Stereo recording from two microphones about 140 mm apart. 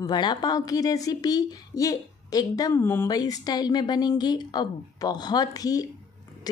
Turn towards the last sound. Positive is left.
turn(degrees=25)  # may be behind; listen again after turning